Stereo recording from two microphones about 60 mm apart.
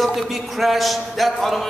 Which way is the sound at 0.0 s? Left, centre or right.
Centre.